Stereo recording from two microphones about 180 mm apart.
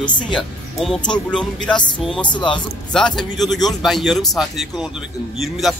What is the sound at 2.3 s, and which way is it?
Speech, 25° left (ahead or behind).